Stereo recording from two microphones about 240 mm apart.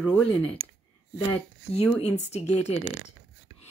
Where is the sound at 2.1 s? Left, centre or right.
Left.